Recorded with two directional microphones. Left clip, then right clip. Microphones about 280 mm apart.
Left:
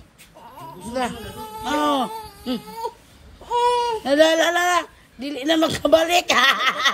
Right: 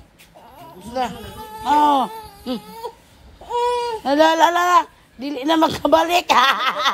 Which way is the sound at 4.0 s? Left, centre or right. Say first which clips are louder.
Right 3 dB; centre.